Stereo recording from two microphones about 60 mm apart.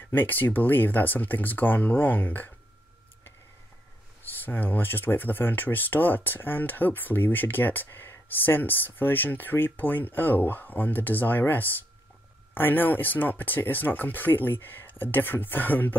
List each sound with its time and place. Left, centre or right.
0.1 s speech: left
4.2 s speech: left